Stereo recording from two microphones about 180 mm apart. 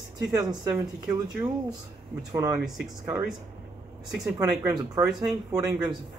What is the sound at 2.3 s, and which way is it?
Speech, 20° right (ahead or behind).